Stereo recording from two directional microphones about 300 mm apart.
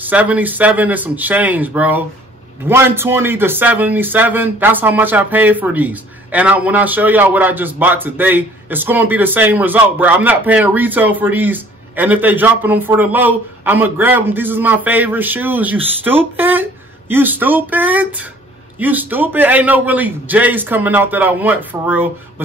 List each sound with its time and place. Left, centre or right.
0.0 s a man's voice: centre